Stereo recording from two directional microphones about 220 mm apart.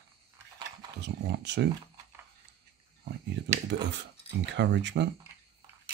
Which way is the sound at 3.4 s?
55° right (ahead or behind).